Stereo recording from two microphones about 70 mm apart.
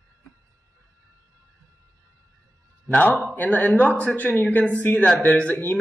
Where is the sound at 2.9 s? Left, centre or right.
Left.